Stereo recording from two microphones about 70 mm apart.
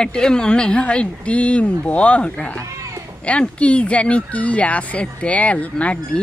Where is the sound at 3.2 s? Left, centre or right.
Centre.